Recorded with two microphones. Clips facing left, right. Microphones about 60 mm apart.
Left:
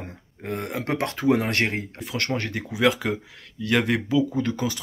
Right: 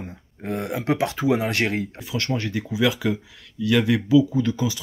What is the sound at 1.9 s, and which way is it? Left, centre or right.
Speech, left.